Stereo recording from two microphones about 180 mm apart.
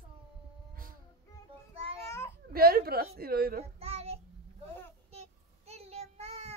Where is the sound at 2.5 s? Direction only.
55° right (ahead or behind).